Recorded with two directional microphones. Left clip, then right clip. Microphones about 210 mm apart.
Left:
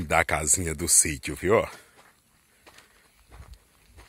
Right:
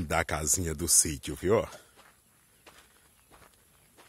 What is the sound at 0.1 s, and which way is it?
Speech, 5° right (ahead or behind).